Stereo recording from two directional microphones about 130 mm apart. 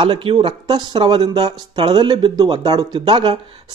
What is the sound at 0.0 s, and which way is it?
Speech, 40° right (ahead or behind).